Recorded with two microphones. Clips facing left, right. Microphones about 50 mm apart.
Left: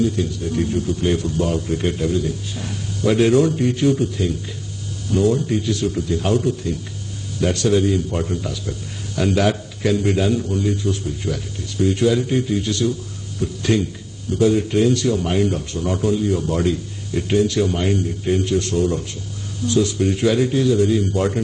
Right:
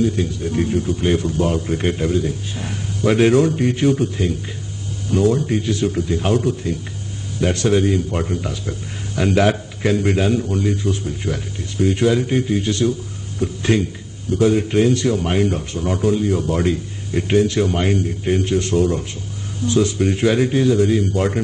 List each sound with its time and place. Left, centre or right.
0.1 s a man's voice: right